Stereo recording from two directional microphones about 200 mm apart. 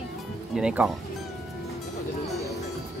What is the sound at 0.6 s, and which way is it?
Speech, 5° right (ahead or behind).